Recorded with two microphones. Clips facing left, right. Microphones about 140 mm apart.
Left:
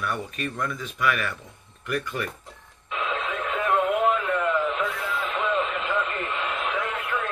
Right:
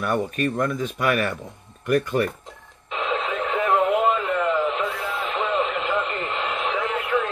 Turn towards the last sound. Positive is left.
turn(degrees=-20)  # may be behind; listen again after turning